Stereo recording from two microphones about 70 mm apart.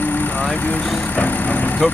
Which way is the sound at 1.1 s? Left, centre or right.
Left.